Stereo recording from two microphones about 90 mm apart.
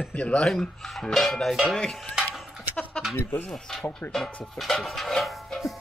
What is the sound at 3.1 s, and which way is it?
Speech, 25° left (ahead or behind).